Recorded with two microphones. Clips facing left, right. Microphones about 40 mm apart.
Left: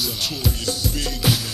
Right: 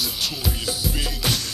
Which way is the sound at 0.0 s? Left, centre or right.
Centre.